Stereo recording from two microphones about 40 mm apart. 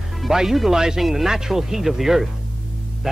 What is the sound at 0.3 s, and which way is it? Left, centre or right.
A man's voice, centre.